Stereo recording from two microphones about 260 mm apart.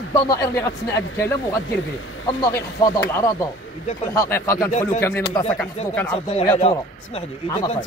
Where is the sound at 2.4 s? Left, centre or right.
Centre.